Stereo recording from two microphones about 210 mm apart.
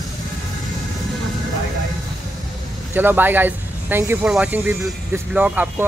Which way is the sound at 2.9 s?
10° right (ahead or behind).